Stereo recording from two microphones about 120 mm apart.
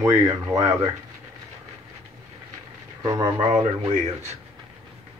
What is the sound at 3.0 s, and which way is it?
Speech, 35° right (ahead or behind).